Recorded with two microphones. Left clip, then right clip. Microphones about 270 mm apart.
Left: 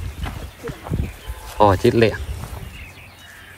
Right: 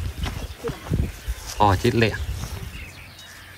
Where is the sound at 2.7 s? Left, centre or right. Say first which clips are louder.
Even; left.